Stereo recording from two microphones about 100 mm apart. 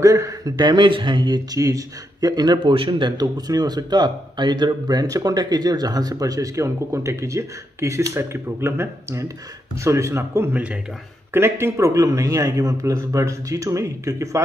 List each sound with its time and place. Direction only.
0.0 s a man's voice: 30° right (ahead or behind)
2.7 s speech: 55° right (ahead or behind); by 14.4 s 30° right (ahead or behind)